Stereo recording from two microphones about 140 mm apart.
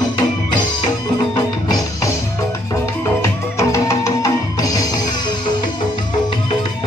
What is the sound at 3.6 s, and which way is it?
Music, 20° left (ahead or behind).